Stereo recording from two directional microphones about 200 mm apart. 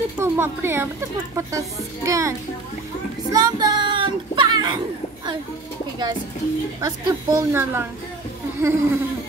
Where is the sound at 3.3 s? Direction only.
20° right (ahead or behind).